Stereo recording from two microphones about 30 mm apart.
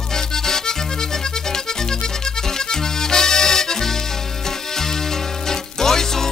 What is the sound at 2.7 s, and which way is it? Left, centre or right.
Music, centre.